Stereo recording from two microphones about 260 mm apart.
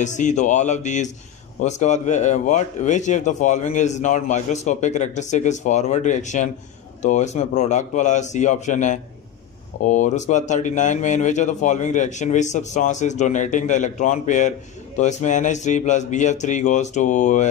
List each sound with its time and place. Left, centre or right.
0.0 s speech: left